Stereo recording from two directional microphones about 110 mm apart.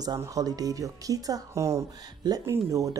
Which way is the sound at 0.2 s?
30° right (ahead or behind).